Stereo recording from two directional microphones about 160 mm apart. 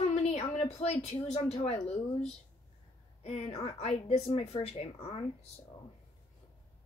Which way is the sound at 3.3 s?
40° left (ahead or behind).